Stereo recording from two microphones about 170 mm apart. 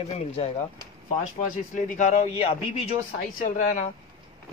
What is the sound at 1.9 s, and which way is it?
Speech, 45° left (ahead or behind).